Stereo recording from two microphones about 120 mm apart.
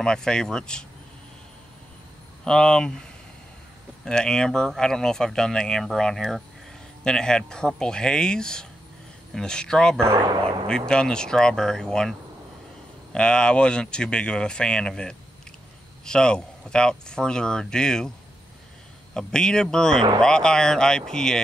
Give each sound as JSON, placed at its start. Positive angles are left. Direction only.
{"t": 0.0, "sound": "speech", "side_deg": 5}
{"t": 2.4, "sound": "speech", "side_deg": 5}
{"t": 4.0, "sound": "speech", "side_deg": 5}
{"t": 9.9, "sound": "speech", "side_deg": -20}
{"t": 10.7, "sound": "speech", "side_deg": 5}
{"t": 19.1, "sound": "speech", "side_deg": 5}